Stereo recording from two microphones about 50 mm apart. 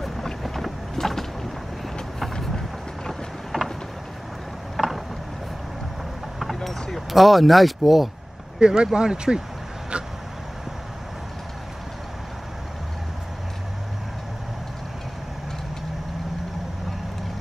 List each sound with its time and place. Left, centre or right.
0.4 s vehicle: centre
4.7 s boat: centre
6.4 s a sound: centre
8.5 s speech: centre